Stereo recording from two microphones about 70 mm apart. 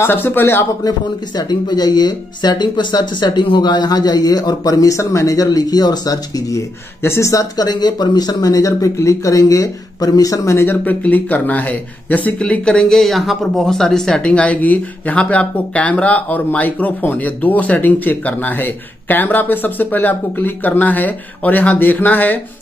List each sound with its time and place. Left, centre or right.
0.0 s speech: left
0.8 s speech: left
7.0 s speech: left
7.6 s speech: left
10.6 s speech: left